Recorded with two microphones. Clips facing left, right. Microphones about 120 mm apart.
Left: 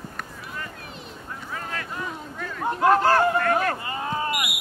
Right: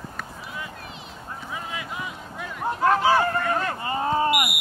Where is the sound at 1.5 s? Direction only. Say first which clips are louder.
Left 1 dB; 10° right (ahead or behind).